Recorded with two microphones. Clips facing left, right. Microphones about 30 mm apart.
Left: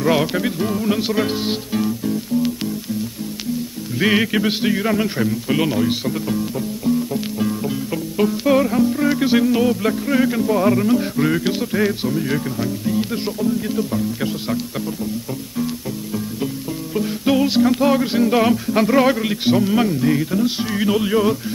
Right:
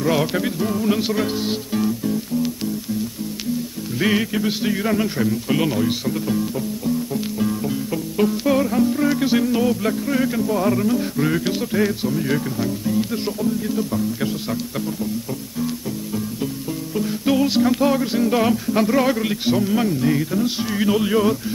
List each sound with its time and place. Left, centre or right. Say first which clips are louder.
0.0 s music: left 2 dB; centre
1.2 s music: left 1 dB; centre
1.8 s music: right 1 dB; centre
4.0 s music: left 3 dB; left
4.7 s music: left 1 dB; centre
16.9 s music: left 2 dB; centre
20.0 s speech: left 2 dB; centre